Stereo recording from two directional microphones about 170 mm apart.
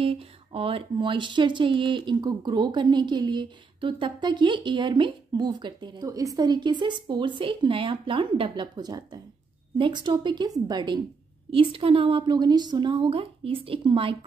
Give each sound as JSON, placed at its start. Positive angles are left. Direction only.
{"t": 0.0, "sound": "a woman's voice", "side_deg": -35}